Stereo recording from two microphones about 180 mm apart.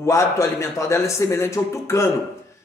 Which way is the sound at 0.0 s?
15° left (ahead or behind).